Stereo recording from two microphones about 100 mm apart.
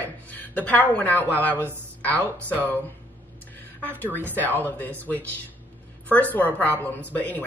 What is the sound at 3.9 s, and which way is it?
Speech, 20° right (ahead or behind).